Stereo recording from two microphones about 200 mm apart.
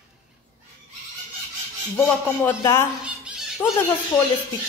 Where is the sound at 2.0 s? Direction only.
10° left (ahead or behind).